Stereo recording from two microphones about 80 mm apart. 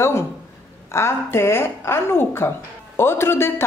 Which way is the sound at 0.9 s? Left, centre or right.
Left.